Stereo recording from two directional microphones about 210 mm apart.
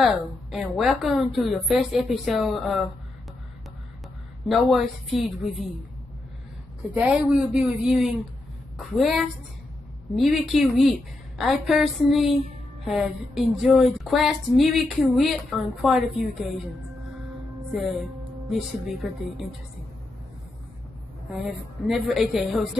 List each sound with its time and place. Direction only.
0.0 s speech: centre (ahead or behind)
4.5 s speech: centre (ahead or behind)
6.9 s speech: 5° right (ahead or behind)
21.8 s speech: centre (ahead or behind)